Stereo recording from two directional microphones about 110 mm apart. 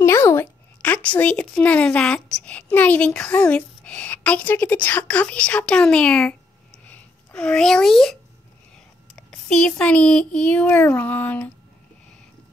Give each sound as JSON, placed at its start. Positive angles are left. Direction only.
{"t": 0.0, "sound": "a woman's voice", "side_deg": 25}